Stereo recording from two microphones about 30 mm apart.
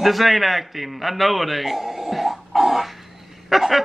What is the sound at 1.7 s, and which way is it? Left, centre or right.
Dog, centre.